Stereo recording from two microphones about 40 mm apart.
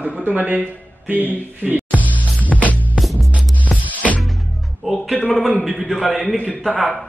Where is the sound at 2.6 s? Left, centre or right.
Left.